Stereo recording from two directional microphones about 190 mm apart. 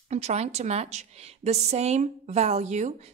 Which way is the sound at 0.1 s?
35° right (ahead or behind).